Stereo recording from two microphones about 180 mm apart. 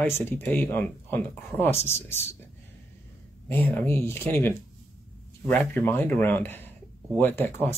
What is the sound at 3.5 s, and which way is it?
Speech, 10° left (ahead or behind).